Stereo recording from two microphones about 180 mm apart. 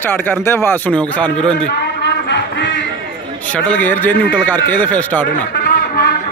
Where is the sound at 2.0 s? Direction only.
75° left (ahead or behind).